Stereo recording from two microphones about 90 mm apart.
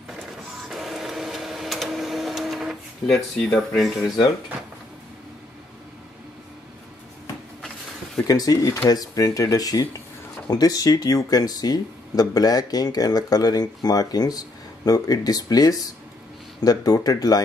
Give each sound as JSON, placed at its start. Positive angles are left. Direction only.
{"t": 0.7, "sound": "printer", "side_deg": 0}
{"t": 3.4, "sound": "speech", "side_deg": 5}
{"t": 8.2, "sound": "speech", "side_deg": 40}